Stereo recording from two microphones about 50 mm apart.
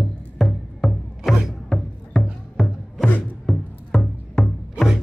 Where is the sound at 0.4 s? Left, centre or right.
Centre.